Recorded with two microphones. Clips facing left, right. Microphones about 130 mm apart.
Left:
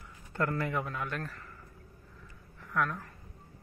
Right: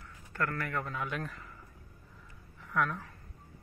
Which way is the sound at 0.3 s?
20° left (ahead or behind).